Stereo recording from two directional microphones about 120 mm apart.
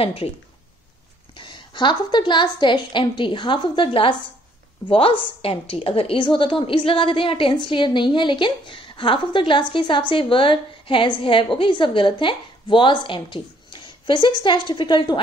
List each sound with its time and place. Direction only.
0.0 s speech: 55° left (ahead or behind)
1.3 s a woman's voice: 45° left (ahead or behind)